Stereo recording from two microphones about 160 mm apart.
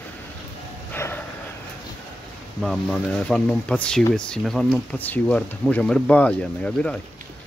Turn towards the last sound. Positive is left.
turn(degrees=5)  # may be behind; listen again after turning